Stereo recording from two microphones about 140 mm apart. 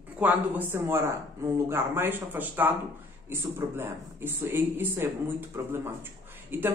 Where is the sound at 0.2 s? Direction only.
10° right (ahead or behind).